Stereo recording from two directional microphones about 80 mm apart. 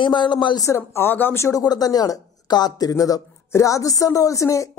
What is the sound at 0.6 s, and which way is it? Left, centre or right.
Speech, left.